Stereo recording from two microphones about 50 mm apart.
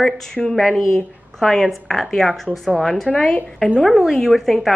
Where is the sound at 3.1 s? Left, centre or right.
Left.